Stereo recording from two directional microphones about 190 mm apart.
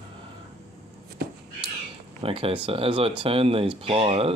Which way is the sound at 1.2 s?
60° right (ahead or behind).